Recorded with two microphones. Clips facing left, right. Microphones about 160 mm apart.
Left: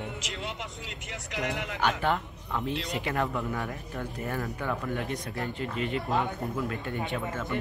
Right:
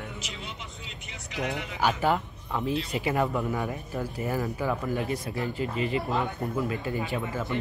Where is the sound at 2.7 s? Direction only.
80° left.